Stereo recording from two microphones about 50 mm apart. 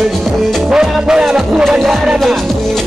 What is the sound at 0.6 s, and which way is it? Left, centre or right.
Music, centre.